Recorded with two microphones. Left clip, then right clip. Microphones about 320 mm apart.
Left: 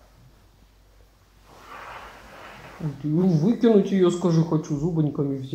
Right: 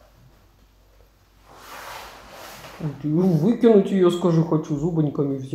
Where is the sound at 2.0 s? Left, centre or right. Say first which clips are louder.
Right 2 dB; centre.